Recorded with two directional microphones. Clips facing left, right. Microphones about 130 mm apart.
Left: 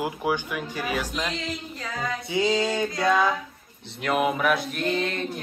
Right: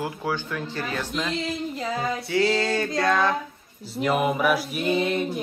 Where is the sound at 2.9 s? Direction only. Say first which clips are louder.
Even; 20° left (ahead or behind).